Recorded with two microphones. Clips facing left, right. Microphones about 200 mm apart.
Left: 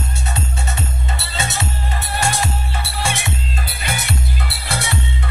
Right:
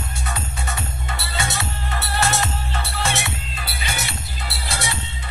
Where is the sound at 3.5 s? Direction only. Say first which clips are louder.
Left 3 dB; 50° left (ahead or behind).